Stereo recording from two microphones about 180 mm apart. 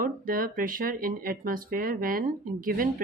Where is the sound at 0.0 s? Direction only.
50° right (ahead or behind).